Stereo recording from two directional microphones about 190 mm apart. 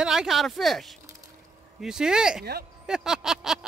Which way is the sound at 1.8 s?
5° right (ahead or behind).